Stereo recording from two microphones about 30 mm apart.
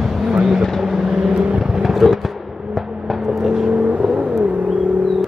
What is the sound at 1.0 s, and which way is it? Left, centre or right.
Vehicle, right.